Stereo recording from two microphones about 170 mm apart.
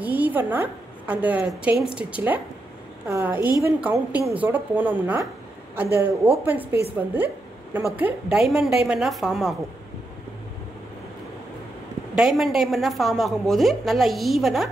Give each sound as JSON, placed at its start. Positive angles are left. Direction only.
{"t": 0.0, "sound": "a woman's voice", "side_deg": -10}
{"t": 7.9, "sound": "a woman's voice", "side_deg": -10}
{"t": 12.2, "sound": "a woman's voice", "side_deg": 0}